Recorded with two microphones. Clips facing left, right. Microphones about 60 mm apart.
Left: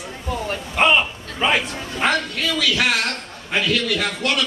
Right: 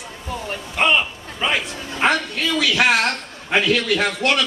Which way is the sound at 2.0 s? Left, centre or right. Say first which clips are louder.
Right 2 dB; right.